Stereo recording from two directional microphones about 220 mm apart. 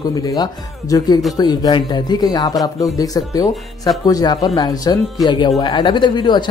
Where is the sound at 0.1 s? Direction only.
15° left (ahead or behind).